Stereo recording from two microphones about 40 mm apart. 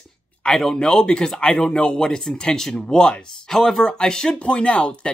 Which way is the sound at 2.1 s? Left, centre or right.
Centre.